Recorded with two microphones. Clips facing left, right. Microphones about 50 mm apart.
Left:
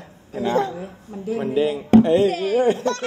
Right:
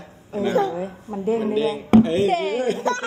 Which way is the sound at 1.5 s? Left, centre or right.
Left.